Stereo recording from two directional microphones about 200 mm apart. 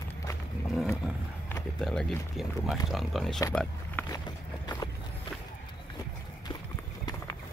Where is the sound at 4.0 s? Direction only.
10° left (ahead or behind).